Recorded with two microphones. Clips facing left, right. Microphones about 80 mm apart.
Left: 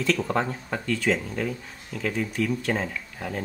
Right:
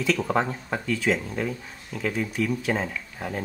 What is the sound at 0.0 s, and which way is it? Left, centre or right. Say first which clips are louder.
Speech: right 1 dB; centre.